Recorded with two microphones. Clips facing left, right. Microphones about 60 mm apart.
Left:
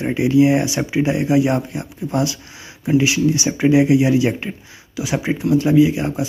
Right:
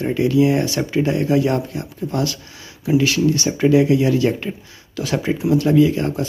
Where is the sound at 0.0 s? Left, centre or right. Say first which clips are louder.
Left 2 dB; left.